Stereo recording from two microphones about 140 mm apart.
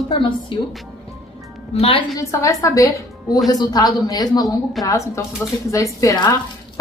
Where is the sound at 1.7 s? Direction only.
45° left (ahead or behind).